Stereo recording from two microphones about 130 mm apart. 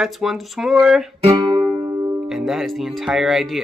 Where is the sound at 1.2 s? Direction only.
40° right (ahead or behind).